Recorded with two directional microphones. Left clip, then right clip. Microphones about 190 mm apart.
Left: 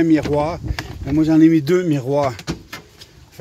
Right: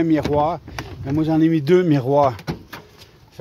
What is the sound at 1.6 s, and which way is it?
Speech, 20° right (ahead or behind).